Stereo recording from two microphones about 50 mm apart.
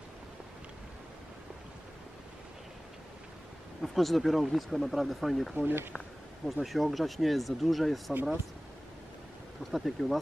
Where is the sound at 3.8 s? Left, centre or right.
Centre.